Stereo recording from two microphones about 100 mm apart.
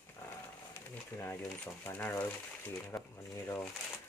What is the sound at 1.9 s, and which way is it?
Speech, 20° left (ahead or behind).